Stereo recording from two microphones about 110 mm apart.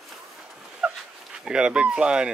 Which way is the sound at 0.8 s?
10° right (ahead or behind).